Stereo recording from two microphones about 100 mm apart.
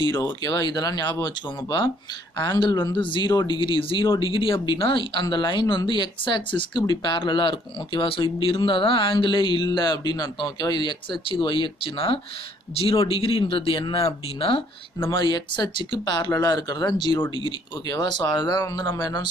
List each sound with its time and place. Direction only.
0.1 s speech: 40° left (ahead or behind); by 14.6 s 65° left (ahead or behind)
15.1 s speech: 50° left (ahead or behind)